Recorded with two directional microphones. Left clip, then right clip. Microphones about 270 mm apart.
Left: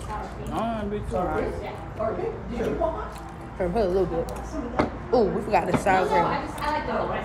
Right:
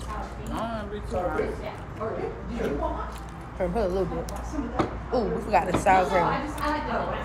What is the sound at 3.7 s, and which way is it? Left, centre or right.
Speech, centre.